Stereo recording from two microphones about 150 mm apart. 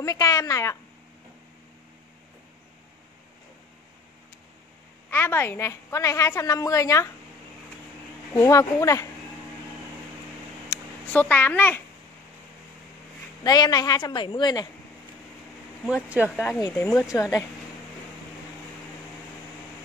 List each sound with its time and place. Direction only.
0.0 s a woman's voice: 20° left (ahead or behind)
5.1 s a woman's voice: 15° left (ahead or behind)
8.4 s a woman's voice: 20° left (ahead or behind)
10.7 s a sound: 20° left (ahead or behind)
11.1 s a child's voice: 10° left (ahead or behind)
13.4 s a woman's voice: 25° left (ahead or behind)
15.8 s speech: 10° right (ahead or behind)
16.7 s a child's voice: 10° left (ahead or behind)
17.1 s a woman's voice: 20° left (ahead or behind)